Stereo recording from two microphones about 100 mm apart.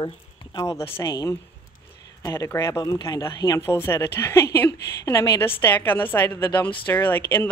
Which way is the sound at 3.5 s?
25° left (ahead or behind).